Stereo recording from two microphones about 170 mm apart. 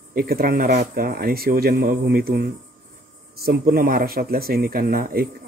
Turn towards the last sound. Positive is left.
turn(degrees=-60)  # may be behind; listen again after turning